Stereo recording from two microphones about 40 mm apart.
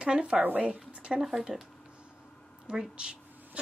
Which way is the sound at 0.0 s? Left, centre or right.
Right.